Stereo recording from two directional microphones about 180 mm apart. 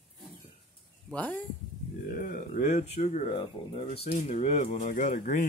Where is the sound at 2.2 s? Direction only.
50° left (ahead or behind).